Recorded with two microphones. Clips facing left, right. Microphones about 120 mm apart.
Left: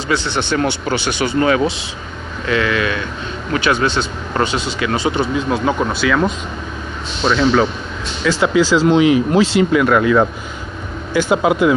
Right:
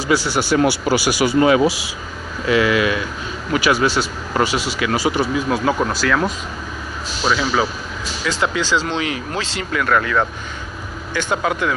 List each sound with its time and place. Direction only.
0.3 s speech: 5° right (ahead or behind)
2.5 s speech: 15° right (ahead or behind)
4.6 s speech: 25° left (ahead or behind)
5.5 s speech: centre (ahead or behind)
8.2 s speech: 15° right (ahead or behind)
8.7 s speech: 15° left (ahead or behind)